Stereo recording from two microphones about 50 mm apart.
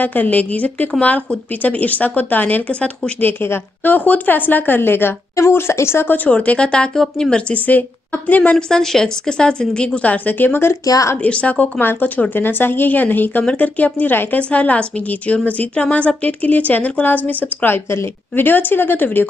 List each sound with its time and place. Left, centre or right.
0.0 s a woman's voice: left
5.3 s a woman's voice: left
6.0 s a woman's voice: left
6.3 s a woman's voice: left
8.3 s speech: left
8.6 s a woman's voice: centre
10.1 s a woman's voice: left
11.2 s speech: left
11.8 s a woman's voice: left